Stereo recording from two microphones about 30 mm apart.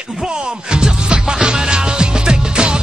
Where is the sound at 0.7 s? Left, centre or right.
Right.